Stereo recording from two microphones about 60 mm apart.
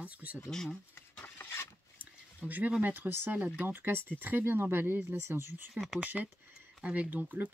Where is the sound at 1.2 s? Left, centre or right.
Left.